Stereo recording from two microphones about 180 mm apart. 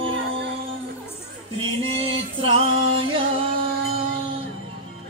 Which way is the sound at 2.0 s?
30° right (ahead or behind).